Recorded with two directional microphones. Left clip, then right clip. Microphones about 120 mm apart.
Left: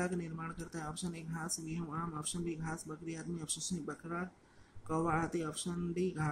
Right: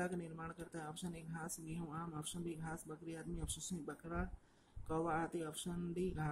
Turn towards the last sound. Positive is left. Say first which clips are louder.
# left 6 dB
turn(degrees=-10)  # may be behind; listen again after turning